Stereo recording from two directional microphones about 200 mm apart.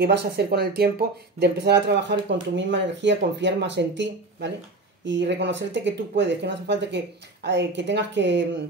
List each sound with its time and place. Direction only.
0.0 s speech: 55° right (ahead or behind)